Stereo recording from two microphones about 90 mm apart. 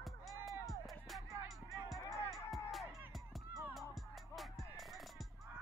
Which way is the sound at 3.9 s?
Centre (ahead or behind).